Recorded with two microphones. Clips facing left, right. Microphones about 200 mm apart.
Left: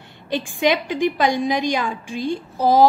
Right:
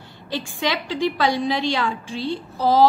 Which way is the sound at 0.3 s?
55° left (ahead or behind).